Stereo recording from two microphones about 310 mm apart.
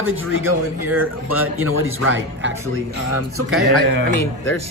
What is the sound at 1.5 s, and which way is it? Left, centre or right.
Speech, right.